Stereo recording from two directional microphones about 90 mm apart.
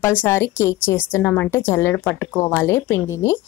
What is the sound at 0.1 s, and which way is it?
A woman's voice, 25° left (ahead or behind).